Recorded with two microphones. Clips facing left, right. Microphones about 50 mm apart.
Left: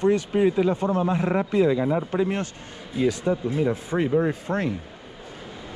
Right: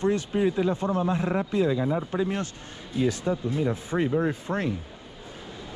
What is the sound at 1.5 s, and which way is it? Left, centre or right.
Speech, left.